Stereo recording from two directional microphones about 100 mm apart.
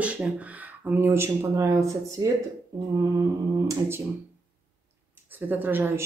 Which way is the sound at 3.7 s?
25° right (ahead or behind).